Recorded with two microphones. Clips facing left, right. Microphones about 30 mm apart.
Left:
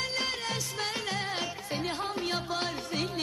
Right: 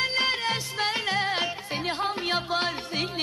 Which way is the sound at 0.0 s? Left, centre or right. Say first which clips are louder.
Right 7 dB; right.